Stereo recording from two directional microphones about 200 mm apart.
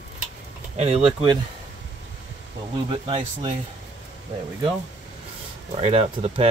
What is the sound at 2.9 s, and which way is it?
Speech, 25° right (ahead or behind).